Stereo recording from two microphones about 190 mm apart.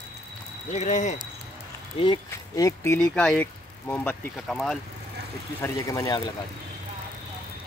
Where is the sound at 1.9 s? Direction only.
25° left (ahead or behind).